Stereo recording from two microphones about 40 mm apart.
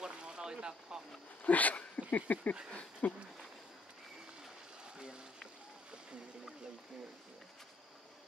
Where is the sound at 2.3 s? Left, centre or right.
Left.